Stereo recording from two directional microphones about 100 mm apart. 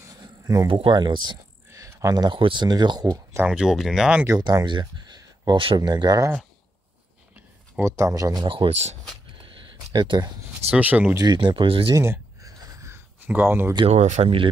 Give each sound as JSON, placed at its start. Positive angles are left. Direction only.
{"t": 0.2, "sound": "a sound", "side_deg": -35}
{"t": 0.7, "sound": "speech", "side_deg": -60}
{"t": 1.7, "sound": "speech", "side_deg": -30}
{"t": 3.4, "sound": "speech", "side_deg": -5}
{"t": 4.3, "sound": "a sound", "side_deg": -40}
{"t": 5.8, "sound": "speech", "side_deg": -45}
{"t": 7.8, "sound": "speech", "side_deg": -30}
{"t": 8.5, "sound": "speech", "side_deg": -75}
{"t": 9.9, "sound": "speech", "side_deg": -45}
{"t": 10.7, "sound": "speech", "side_deg": -15}
{"t": 11.1, "sound": "speech", "side_deg": -50}
{"t": 11.9, "sound": "a sound", "side_deg": -30}
{"t": 13.3, "sound": "speech", "side_deg": -20}
{"t": 13.8, "sound": "speech", "side_deg": -90}